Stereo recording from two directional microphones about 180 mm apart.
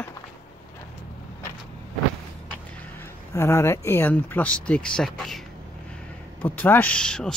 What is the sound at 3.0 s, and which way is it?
Speech, 15° left (ahead or behind).